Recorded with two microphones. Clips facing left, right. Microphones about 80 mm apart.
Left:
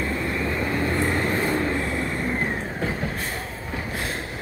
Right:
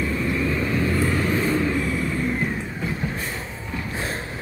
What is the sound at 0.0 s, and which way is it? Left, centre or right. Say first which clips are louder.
Vehicle: right 2 dB; left.